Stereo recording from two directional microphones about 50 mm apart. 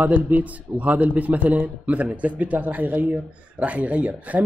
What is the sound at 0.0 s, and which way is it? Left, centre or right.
A man's voice, right.